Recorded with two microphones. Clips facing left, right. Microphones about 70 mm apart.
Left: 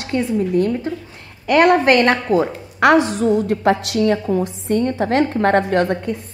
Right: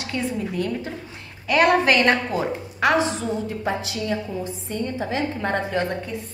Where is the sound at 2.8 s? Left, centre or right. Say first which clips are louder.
Left 7 dB; left.